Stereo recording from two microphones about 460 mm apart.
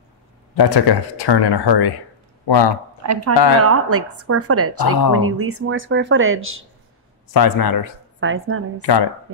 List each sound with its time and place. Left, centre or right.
0.6 s a man's voice: left
2.7 s speech: right
7.3 s speech: left
8.2 s speech: right